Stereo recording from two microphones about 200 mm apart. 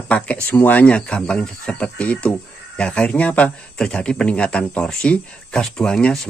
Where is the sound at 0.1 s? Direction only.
5° left (ahead or behind).